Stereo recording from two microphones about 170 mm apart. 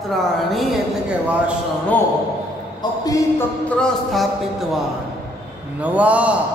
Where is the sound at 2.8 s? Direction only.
20° left (ahead or behind).